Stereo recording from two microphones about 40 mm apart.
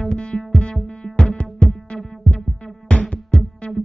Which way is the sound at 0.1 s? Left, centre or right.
Left.